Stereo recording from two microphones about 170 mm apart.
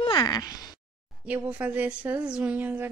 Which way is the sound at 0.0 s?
25° left (ahead or behind).